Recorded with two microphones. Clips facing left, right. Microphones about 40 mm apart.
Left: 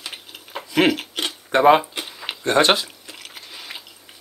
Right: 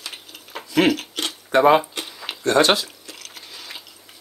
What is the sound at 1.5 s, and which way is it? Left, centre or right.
Speech, centre.